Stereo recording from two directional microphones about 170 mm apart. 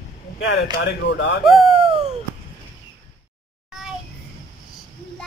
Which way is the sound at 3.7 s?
5° right (ahead or behind).